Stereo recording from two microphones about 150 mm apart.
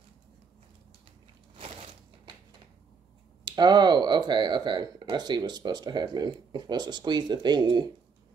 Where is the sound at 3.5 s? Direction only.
30° right (ahead or behind).